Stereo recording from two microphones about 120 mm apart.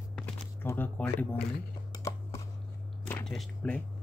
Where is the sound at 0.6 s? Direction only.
15° left (ahead or behind).